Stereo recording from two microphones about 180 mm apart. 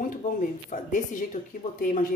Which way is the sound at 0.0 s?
45° left (ahead or behind).